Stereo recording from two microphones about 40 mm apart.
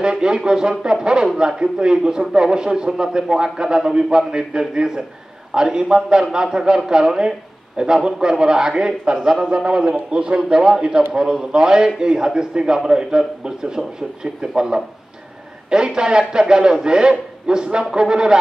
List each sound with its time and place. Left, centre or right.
0.0 s speech: right